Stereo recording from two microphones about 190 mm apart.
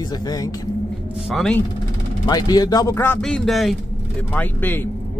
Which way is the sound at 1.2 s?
Centre (ahead or behind).